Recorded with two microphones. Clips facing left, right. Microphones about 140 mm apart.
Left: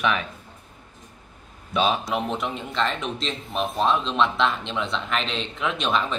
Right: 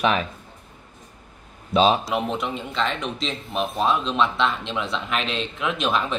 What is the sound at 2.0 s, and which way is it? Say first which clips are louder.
Speech: right 1 dB; centre (ahead or behind).